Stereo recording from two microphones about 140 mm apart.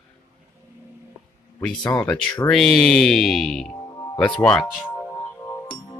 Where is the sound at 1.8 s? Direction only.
25° left (ahead or behind).